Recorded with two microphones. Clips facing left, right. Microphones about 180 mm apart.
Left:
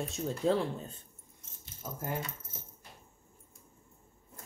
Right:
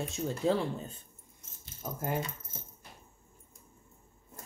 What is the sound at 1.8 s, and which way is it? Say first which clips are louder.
Speech: right 3 dB; 20° right (ahead or behind).